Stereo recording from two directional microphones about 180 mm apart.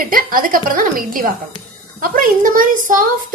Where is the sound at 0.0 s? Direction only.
50° right (ahead or behind).